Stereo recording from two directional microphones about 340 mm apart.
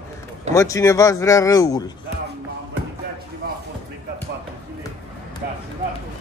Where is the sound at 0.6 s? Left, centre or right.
Centre.